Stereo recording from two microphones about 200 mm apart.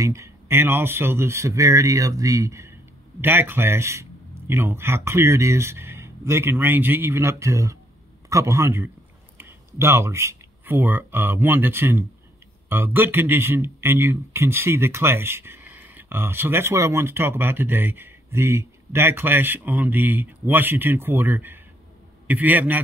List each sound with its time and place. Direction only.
0.0 s speech: 15° right (ahead or behind)